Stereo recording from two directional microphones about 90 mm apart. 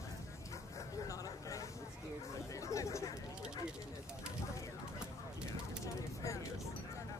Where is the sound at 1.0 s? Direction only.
40° left (ahead or behind).